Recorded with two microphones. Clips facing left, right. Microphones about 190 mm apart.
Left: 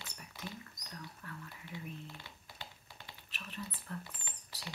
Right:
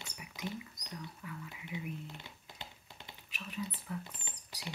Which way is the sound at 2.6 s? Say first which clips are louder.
Right 1 dB; 20° right (ahead or behind).